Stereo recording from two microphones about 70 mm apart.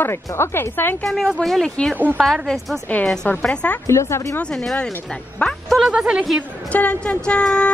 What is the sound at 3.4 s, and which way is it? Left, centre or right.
Speech, centre.